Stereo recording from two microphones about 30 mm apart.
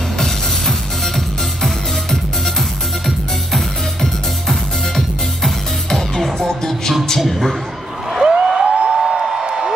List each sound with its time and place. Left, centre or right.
0.2 s music: centre
3.5 s music: centre
5.9 s music: centre
7.2 s speech: centre
8.2 s a sound: right